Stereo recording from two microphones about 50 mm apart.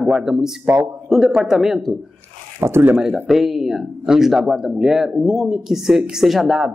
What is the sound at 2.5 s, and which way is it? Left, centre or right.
Speech, right.